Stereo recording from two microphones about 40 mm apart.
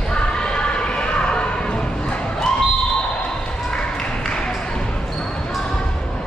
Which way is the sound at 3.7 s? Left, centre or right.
Left.